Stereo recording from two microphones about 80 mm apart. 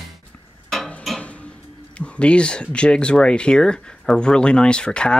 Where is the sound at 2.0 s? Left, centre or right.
Centre.